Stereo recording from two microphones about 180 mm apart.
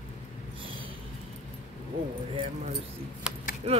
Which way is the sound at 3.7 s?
35° right (ahead or behind).